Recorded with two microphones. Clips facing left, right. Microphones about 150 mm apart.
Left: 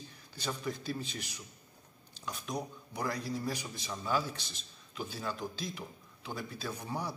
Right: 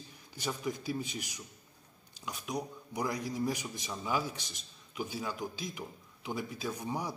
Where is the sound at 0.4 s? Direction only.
15° right (ahead or behind).